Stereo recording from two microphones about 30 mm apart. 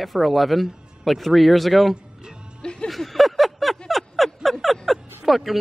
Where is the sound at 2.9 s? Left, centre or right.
Centre.